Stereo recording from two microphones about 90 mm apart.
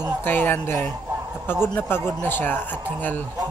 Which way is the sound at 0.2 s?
25° left (ahead or behind).